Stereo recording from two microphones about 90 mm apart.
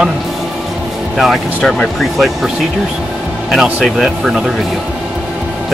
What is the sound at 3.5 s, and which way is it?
Speech, 5° right (ahead or behind).